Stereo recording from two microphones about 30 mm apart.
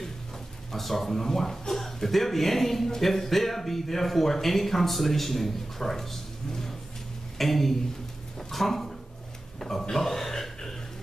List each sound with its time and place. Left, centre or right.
0.7 s a man's voice: centre
7.3 s speech: centre
9.6 s a sound: centre